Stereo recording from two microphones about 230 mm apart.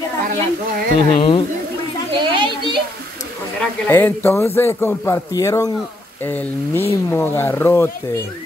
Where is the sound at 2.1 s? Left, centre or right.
Right.